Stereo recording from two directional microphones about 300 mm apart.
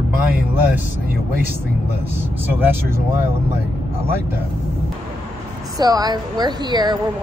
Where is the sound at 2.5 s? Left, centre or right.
Centre.